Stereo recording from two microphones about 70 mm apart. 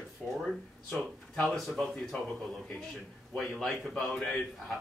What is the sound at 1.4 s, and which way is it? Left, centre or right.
Speech, centre.